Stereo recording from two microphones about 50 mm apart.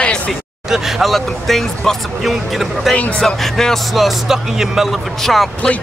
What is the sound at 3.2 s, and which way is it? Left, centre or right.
Speech, centre.